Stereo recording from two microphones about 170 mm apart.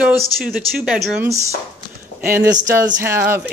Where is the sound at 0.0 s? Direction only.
5° right (ahead or behind).